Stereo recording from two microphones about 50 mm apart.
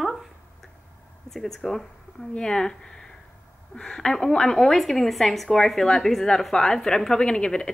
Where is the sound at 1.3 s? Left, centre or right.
Centre.